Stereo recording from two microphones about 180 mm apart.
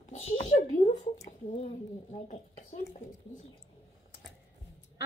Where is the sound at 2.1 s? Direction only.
50° left (ahead or behind).